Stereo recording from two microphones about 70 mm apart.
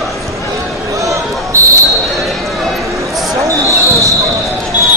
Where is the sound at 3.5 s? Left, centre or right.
Right.